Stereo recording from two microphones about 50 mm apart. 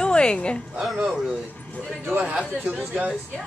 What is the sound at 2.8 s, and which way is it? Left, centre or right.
Speech, right.